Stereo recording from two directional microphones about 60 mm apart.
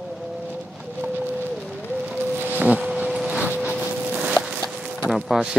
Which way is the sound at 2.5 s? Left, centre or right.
Right.